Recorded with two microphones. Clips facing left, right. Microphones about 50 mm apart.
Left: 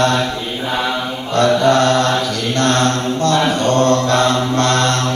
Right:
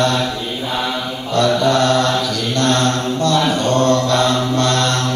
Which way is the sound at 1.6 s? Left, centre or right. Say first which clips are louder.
Left 2 dB; left.